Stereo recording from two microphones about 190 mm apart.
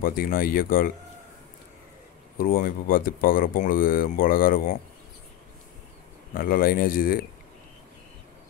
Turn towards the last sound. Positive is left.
turn(degrees=50)  # may be behind; listen again after turning